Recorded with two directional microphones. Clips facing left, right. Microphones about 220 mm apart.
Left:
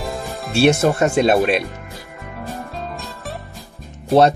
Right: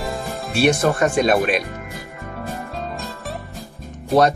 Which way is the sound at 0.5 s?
25° left (ahead or behind).